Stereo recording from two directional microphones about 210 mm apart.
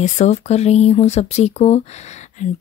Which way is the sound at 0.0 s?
35° left (ahead or behind).